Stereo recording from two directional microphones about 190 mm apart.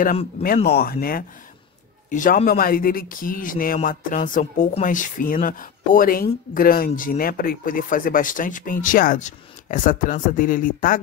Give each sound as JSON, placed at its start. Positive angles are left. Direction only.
{"t": 0.7, "sound": "speech", "side_deg": 55}